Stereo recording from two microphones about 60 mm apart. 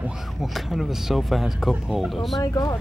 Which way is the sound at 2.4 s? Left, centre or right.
Left.